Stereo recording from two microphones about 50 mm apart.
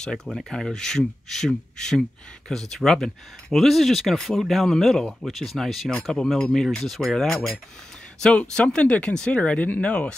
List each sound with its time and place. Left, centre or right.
0.0 s speech: centre
8.4 s speech: left